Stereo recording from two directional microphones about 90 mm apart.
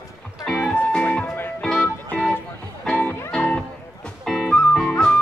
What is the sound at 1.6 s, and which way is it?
Music, centre (ahead or behind).